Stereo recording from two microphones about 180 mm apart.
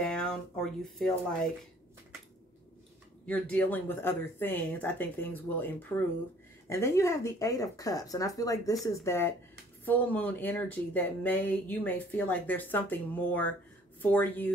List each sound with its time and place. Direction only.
0.0 s speech: 5° left (ahead or behind)
3.3 s speech: 10° left (ahead or behind)